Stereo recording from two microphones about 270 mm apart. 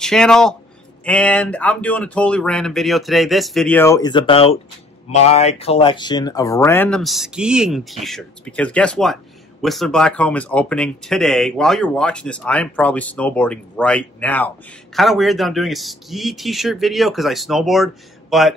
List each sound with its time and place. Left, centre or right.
0.0 s speech: centre